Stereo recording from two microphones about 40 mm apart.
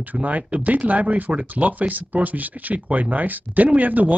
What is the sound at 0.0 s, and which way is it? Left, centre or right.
Speech, right.